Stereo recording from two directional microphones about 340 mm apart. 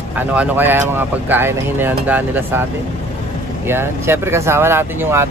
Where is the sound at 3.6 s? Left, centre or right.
Centre.